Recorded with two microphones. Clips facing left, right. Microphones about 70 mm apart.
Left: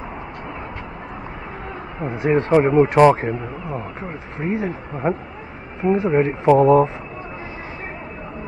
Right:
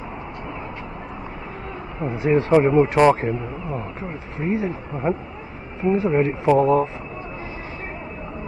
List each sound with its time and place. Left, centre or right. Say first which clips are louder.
2.0 s speech: left 1 dB; left
2.5 s speech: left 2 dB; left
4.4 s speech: even; left
5.8 s speech: left 2 dB; left
6.1 s speech: left 4 dB; left
6.6 s speech: left 4 dB; left